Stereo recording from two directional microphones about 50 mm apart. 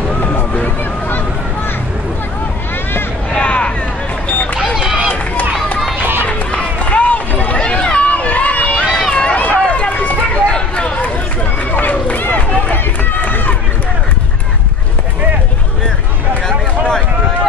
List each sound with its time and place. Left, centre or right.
0.2 s a sound: left
3.3 s vehicle: left
4.7 s run: centre
6.2 s run: left
8.7 s run: centre
9.1 s run: left
11.7 s run: left